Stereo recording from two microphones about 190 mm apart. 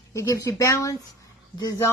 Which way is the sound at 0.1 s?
15° left (ahead or behind).